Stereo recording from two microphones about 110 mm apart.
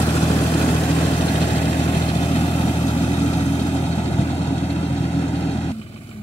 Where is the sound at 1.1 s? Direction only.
60° left (ahead or behind).